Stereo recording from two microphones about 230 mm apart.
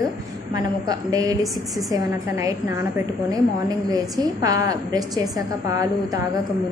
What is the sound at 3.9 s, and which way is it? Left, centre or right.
A woman's voice, centre.